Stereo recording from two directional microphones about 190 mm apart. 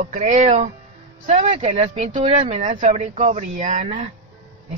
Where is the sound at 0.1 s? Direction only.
40° right (ahead or behind).